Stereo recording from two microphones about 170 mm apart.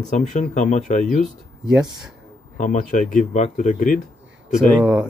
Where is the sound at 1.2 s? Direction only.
5° right (ahead or behind).